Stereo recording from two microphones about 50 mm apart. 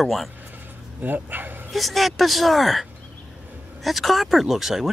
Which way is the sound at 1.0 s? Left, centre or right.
Right.